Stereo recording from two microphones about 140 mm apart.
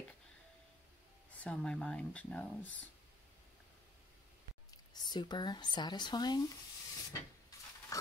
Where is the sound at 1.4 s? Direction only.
5° left (ahead or behind).